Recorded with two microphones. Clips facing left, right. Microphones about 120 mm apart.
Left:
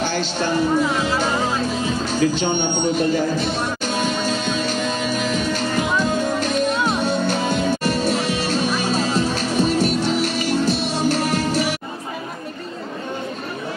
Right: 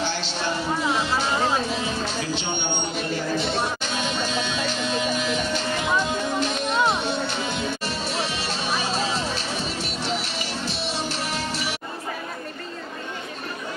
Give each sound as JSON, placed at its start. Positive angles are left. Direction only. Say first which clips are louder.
{"t": 0.0, "sound": "music", "louder": "left 5 dB", "side_deg": 50}
{"t": 2.0, "sound": "music", "louder": "left 8 dB", "side_deg": 45}